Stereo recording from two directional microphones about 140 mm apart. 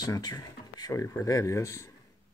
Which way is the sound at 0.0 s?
30° left (ahead or behind).